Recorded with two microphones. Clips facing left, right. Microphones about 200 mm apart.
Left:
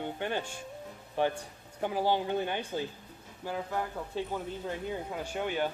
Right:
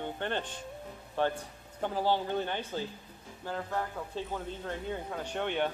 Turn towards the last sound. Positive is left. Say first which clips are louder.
# even
turn(degrees=5)  # may be behind; listen again after turning